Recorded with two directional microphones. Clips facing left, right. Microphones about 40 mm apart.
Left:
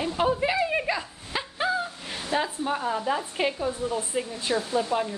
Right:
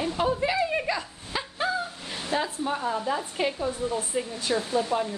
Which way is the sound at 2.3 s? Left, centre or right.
Centre.